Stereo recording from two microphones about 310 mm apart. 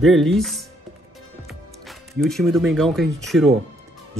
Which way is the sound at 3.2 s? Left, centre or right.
Centre.